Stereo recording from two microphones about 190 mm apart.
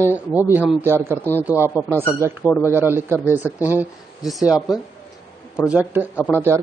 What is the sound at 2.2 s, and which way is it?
Speech, 15° right (ahead or behind).